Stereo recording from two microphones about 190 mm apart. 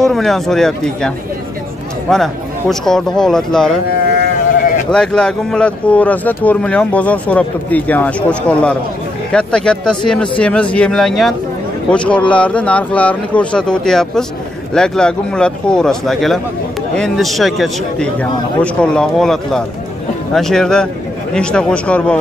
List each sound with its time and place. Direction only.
0.0 s a man's voice: centre (ahead or behind)
4.9 s a man's voice: 5° left (ahead or behind)